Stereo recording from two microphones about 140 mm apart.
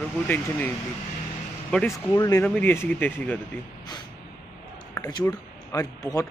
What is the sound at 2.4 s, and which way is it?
Speech, 10° left (ahead or behind).